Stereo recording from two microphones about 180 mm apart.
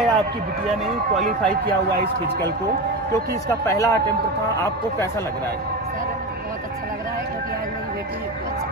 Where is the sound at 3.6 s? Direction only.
15° left (ahead or behind).